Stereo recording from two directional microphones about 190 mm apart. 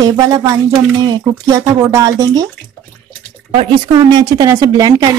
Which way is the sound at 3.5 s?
25° right (ahead or behind).